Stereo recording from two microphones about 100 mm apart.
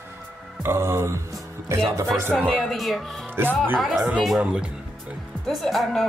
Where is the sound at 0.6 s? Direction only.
25° right (ahead or behind).